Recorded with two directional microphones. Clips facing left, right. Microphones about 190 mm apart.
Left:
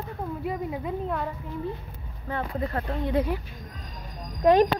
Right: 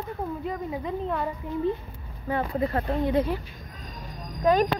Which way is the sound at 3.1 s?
10° left (ahead or behind).